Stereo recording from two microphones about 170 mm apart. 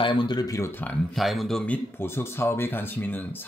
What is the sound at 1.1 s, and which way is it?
Speech, centre (ahead or behind).